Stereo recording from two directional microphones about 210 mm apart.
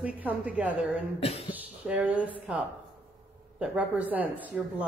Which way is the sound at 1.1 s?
30° left (ahead or behind).